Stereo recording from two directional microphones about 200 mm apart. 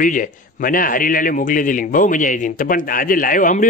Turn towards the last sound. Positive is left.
turn(degrees=40)  # may be behind; listen again after turning